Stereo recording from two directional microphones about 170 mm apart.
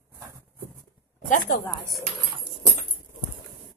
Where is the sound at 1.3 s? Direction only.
55° left (ahead or behind).